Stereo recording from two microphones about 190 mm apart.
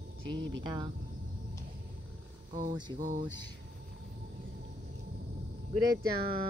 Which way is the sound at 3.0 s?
40° right (ahead or behind).